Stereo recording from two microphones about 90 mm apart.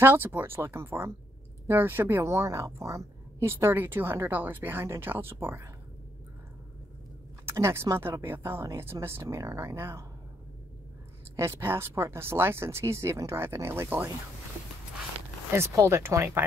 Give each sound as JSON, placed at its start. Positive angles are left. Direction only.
{"t": 0.0, "sound": "a woman's voice", "side_deg": -25}
{"t": 7.4, "sound": "a woman's voice", "side_deg": -30}
{"t": 11.3, "sound": "a woman's voice", "side_deg": -30}
{"t": 15.5, "sound": "a woman's voice", "side_deg": -30}